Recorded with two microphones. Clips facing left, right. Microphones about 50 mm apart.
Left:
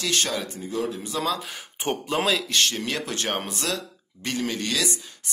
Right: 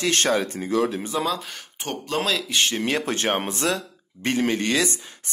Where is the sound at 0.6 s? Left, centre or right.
Right.